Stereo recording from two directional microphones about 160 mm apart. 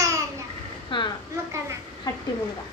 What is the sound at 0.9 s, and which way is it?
Speech, 30° left (ahead or behind).